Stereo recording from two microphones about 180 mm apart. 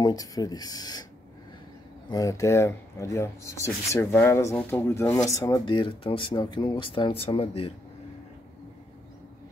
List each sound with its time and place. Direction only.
0.0 s speech: 20° left (ahead or behind)
2.0 s speech: 20° left (ahead or behind)